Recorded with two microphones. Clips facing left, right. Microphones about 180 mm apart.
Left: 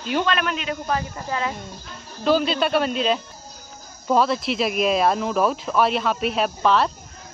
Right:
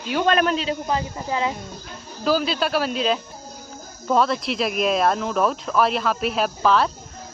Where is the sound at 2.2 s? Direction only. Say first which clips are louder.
Left 2 dB; centre (ahead or behind).